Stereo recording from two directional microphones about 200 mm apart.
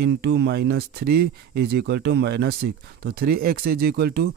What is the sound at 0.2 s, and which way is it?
Speech, 55° right (ahead or behind).